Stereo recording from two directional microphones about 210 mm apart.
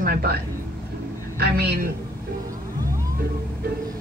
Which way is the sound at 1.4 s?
50° right (ahead or behind).